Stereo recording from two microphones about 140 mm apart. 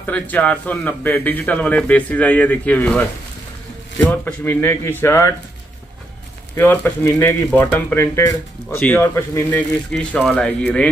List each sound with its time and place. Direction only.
0.0 s a man's voice: 10° left (ahead or behind)
4.1 s a man's voice: 15° left (ahead or behind)
6.5 s a man's voice: 15° left (ahead or behind)